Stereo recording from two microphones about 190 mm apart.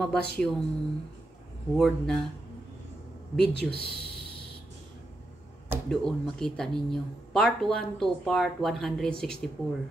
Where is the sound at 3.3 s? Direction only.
60° left (ahead or behind).